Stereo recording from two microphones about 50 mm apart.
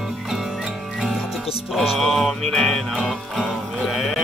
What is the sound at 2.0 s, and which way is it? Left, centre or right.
Music, centre.